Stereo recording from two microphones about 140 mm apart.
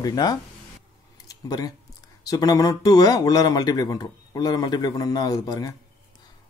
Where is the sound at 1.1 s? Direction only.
25° left (ahead or behind).